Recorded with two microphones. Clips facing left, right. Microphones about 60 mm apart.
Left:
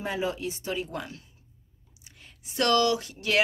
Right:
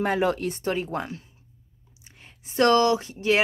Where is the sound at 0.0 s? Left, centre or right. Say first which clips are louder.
Right 7 dB; right.